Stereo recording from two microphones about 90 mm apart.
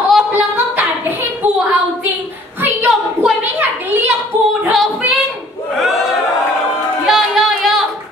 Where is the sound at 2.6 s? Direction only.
25° right (ahead or behind).